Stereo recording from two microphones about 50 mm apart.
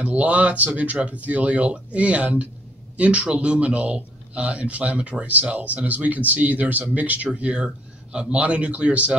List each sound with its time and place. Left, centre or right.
0.0 s a man's voice: right
7.3 s a man's voice: right